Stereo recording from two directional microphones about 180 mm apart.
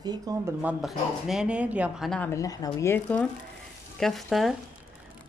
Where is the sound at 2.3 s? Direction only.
20° left (ahead or behind).